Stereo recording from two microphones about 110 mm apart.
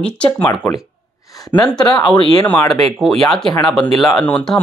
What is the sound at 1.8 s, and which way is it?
Speech, 45° left (ahead or behind).